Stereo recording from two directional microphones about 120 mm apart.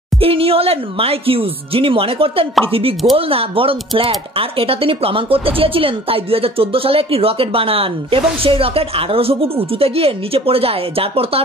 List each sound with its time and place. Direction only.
0.2 s speech: 50° right (ahead or behind)